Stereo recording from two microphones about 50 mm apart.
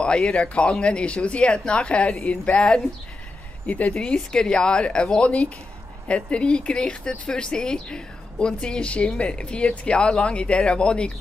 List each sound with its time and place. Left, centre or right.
0.0 s speech: centre
3.6 s speech: left
4.0 s a woman's voice: centre